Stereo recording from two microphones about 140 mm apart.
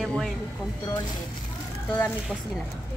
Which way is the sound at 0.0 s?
5° left (ahead or behind).